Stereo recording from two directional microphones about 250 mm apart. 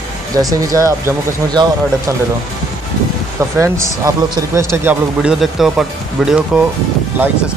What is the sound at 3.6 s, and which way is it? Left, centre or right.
Speech, centre.